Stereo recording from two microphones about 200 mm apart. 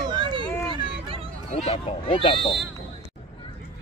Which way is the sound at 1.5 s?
30° left (ahead or behind).